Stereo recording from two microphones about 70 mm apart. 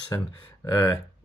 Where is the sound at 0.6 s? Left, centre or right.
Left.